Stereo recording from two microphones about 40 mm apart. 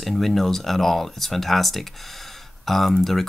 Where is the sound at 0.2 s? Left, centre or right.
Centre.